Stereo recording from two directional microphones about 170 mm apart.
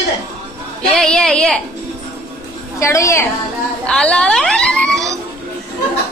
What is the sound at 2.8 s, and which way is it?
Speech, 15° left (ahead or behind).